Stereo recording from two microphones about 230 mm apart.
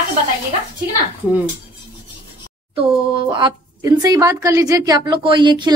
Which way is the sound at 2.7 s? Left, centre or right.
Right.